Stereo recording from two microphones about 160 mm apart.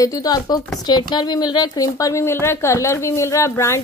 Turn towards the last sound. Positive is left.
turn(degrees=15)  # may be behind; listen again after turning